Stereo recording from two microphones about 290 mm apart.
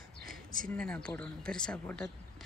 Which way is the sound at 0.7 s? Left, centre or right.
Centre.